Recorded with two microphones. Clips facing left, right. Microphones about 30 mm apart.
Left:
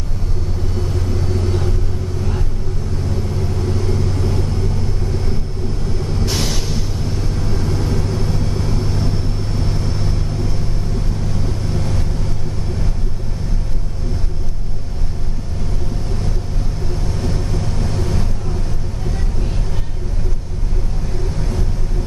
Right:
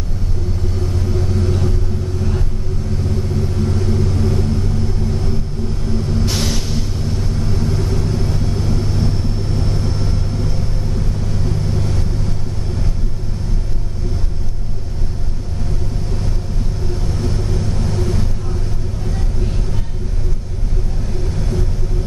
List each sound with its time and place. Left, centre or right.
0.8 s vehicle: centre
3.4 s vehicle: centre
6.2 s vehicle: centre
11.7 s vehicle: centre
17.1 s vehicle: centre